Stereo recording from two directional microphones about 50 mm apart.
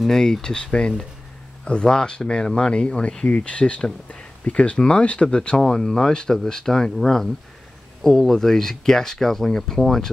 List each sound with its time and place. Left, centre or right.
0.0 s speech: centre
3.3 s speech: left
5.6 s speech: centre